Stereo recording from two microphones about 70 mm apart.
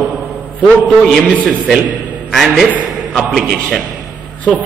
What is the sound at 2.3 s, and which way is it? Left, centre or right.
A man's voice, centre.